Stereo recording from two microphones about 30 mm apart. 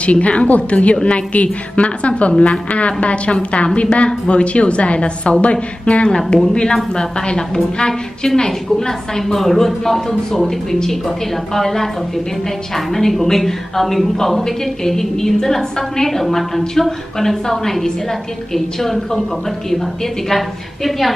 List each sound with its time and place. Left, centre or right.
0.0 s a woman's voice: left
3.3 s a woman's voice: left
3.7 s a woman's voice: left
6.4 s a woman's voice: left; by 19.2 s centre
20.2 s a woman's voice: centre